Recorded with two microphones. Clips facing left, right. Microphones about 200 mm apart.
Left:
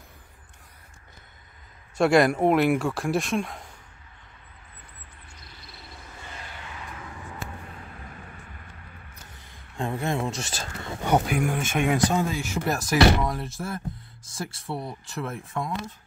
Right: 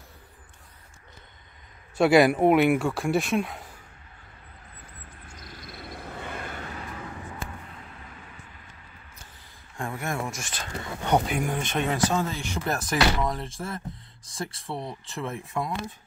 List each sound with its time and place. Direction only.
2.0 s speech: 5° right (ahead or behind)
5.4 s a sound: 50° right (ahead or behind)
9.8 s speech: 20° left (ahead or behind)
11.1 s speech: 5° left (ahead or behind)